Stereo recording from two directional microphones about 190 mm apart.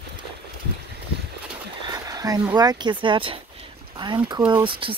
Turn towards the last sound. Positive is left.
turn(degrees=-25)  # may be behind; listen again after turning